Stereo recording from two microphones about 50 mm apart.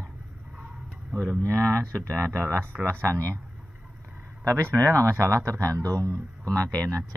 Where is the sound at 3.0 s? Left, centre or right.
Right.